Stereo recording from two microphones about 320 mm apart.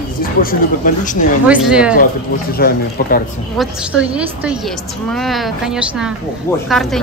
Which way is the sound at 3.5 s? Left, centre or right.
Centre.